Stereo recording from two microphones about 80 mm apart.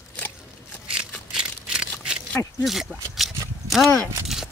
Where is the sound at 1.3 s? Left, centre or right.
Centre.